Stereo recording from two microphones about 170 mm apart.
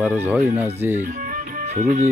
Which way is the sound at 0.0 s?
10° right (ahead or behind).